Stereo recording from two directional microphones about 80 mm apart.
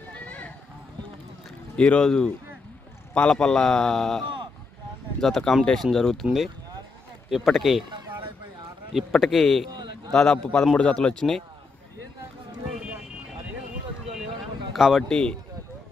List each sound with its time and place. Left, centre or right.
0.1 s a sound: centre
1.8 s a man's voice: centre
5.2 s speech: centre
7.2 s speech: centre
7.9 s a sound: right
8.9 s a man's voice: centre
14.7 s speech: centre
15.0 s a man's voice: centre